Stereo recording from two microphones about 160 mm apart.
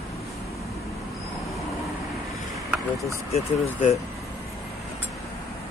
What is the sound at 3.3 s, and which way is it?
Speech, 45° left (ahead or behind).